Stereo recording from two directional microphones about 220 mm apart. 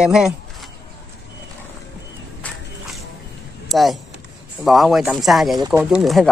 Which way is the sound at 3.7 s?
Centre (ahead or behind).